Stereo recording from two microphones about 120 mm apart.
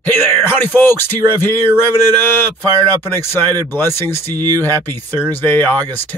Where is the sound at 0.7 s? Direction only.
15° left (ahead or behind).